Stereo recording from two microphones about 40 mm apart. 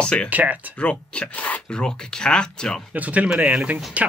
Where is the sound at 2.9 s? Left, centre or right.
Right.